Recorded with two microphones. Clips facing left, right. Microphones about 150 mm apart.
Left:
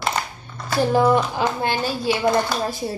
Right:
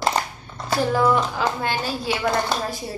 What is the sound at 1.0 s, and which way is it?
Speech, 25° left (ahead or behind).